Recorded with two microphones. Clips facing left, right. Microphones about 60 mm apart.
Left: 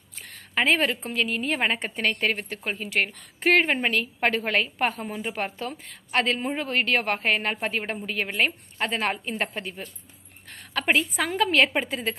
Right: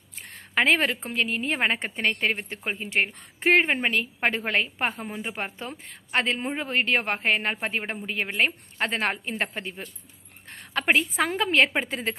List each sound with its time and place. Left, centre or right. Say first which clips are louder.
0.2 s a woman's voice: right 1 dB; right
8.7 s a woman's voice: even; right